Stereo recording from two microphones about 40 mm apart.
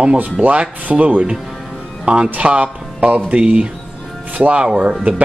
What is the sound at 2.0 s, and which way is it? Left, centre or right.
Speech, right.